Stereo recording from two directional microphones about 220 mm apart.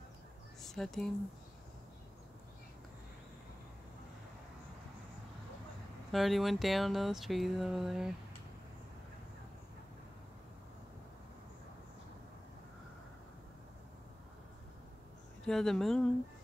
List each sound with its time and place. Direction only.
0.6 s speech: centre (ahead or behind)
6.1 s speech: centre (ahead or behind)
15.4 s speech: centre (ahead or behind)